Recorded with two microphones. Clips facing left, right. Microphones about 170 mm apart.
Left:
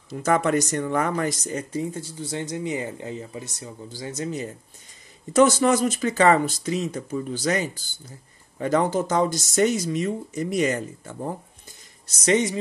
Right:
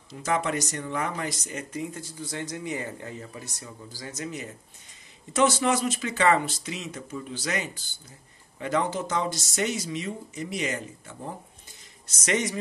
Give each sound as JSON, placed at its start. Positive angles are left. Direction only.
{"t": 0.1, "sound": "speech", "side_deg": 50}
{"t": 5.3, "sound": "speech", "side_deg": 45}
{"t": 12.1, "sound": "a man's voice", "side_deg": 30}